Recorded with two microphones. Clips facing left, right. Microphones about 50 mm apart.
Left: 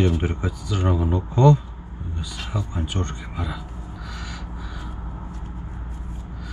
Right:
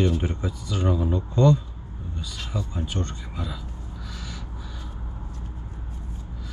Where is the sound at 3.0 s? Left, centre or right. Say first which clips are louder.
Left 3 dB; centre.